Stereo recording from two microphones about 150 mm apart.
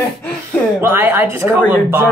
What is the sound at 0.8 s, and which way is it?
Speech, 15° right (ahead or behind).